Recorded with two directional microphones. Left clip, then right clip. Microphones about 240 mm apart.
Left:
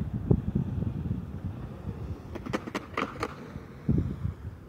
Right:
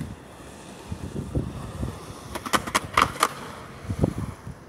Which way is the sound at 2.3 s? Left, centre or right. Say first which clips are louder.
Right 11 dB; centre.